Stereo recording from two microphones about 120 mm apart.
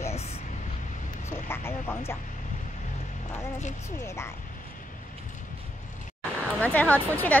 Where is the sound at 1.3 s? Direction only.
20° left (ahead or behind).